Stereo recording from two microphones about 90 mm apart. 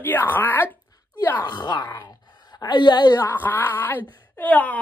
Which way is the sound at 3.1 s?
25° left (ahead or behind).